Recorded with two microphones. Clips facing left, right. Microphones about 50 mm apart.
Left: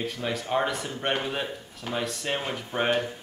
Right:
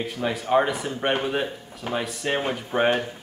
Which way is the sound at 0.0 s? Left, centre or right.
Centre.